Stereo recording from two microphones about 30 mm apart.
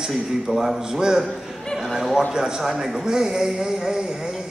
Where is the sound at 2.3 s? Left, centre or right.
Right.